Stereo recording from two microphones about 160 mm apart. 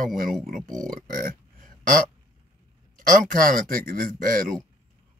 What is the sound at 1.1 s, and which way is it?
Burping, 60° right (ahead or behind).